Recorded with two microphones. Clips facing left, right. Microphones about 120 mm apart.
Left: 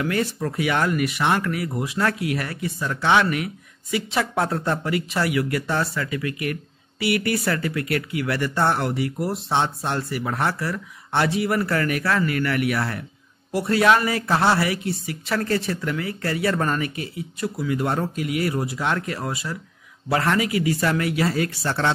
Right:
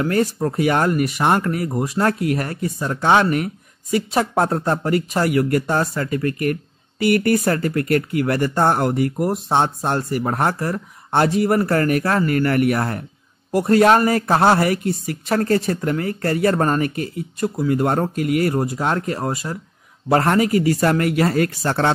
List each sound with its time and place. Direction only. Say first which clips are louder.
0.0 s speech: right 5 dB; 40° right (ahead or behind)